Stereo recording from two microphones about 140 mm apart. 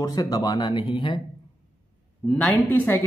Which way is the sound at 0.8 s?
40° left (ahead or behind).